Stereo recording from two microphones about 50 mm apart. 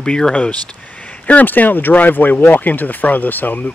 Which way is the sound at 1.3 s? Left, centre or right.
Left.